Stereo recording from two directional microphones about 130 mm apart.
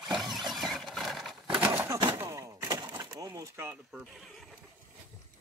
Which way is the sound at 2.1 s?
25° right (ahead or behind).